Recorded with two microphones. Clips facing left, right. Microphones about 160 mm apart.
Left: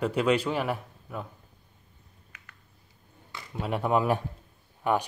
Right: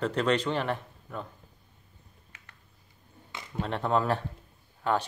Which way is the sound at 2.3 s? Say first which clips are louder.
Left 4 dB; 30° right (ahead or behind).